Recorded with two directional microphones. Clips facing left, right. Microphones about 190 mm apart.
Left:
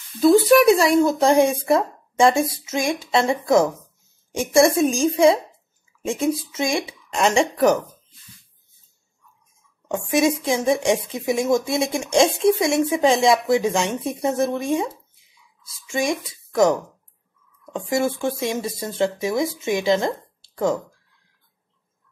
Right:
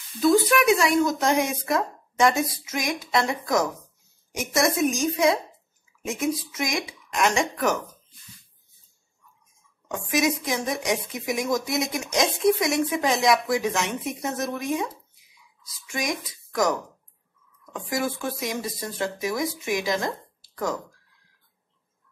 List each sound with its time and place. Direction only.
0.2 s a woman's voice: 35° left (ahead or behind)
9.8 s a woman's voice: 25° left (ahead or behind)
17.7 s a woman's voice: 25° left (ahead or behind)